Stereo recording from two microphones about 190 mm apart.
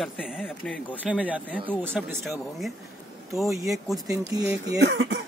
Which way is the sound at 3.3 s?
Centre (ahead or behind).